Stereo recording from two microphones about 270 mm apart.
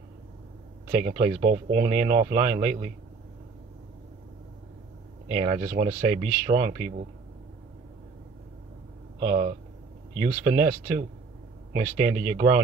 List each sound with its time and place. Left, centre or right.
0.9 s speech: right
5.3 s speech: right
9.3 s speech: right